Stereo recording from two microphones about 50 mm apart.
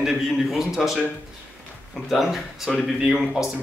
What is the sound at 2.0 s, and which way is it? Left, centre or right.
Speech, centre.